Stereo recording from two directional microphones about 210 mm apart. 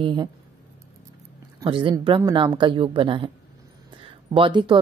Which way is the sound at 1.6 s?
25° right (ahead or behind).